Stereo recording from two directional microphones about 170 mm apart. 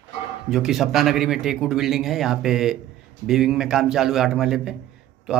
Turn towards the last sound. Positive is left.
turn(degrees=0)  # may be behind; listen again after turning